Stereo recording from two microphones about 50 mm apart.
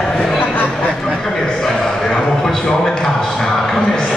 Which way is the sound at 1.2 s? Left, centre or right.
Centre.